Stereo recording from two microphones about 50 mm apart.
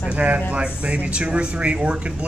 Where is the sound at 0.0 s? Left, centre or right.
Right.